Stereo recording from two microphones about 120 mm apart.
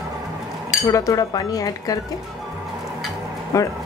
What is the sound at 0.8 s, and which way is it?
Speech, 30° left (ahead or behind).